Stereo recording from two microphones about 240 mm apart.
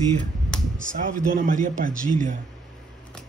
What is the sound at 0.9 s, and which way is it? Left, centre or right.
Speech, right.